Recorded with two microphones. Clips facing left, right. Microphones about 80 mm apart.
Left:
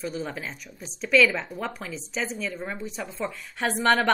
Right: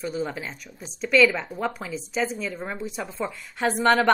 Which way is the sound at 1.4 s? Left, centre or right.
Centre.